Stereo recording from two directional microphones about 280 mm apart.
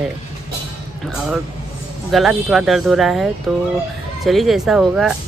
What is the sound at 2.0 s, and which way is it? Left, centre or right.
Speech, centre.